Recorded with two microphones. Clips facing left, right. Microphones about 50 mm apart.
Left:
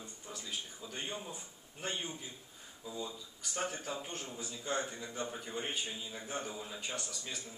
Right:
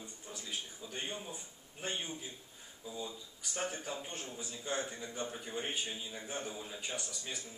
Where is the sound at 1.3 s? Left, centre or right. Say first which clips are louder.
Even; centre.